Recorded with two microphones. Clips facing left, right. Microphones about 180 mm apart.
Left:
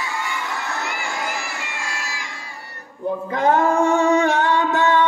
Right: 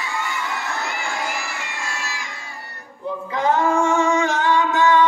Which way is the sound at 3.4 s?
55° left (ahead or behind).